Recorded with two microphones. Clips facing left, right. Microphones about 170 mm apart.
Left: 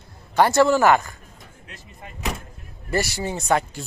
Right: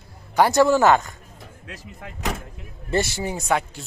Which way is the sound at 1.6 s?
90° right.